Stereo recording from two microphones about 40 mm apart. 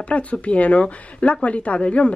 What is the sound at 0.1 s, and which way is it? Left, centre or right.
A woman's voice, left.